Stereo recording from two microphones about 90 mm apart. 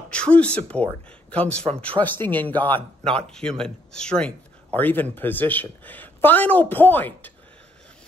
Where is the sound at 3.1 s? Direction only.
5° left (ahead or behind).